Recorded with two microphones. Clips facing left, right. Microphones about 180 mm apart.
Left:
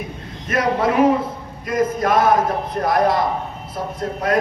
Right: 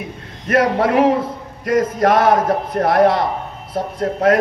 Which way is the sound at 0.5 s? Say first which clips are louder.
Right 3 dB; 60° right (ahead or behind).